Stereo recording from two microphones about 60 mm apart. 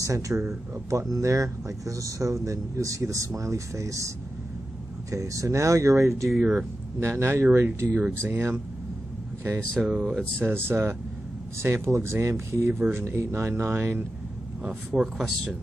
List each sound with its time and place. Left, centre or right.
0.0 s speech: right
5.1 s speech: right
7.0 s speech: right
9.8 s speech: centre
10.4 s speech: right
12.7 s speech: right
13.0 s speech: right
14.9 s speech: centre